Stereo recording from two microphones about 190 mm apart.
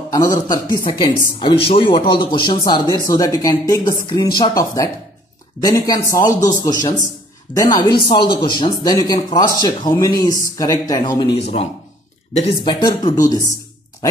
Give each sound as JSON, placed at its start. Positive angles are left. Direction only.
{"t": 0.1, "sound": "speech", "side_deg": 20}
{"t": 12.6, "sound": "speech", "side_deg": 20}